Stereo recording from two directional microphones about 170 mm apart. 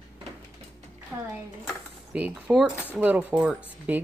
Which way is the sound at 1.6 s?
5° right (ahead or behind).